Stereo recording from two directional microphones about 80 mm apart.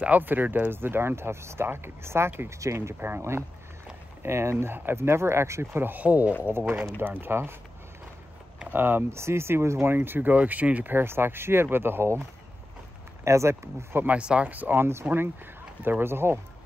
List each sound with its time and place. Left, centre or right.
0.0 s speech: right
8.5 s speech: right
14.0 s speech: centre; by 16.3 s right